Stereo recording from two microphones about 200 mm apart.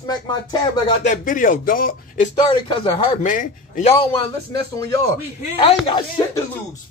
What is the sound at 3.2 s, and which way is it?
Speech, 40° left (ahead or behind).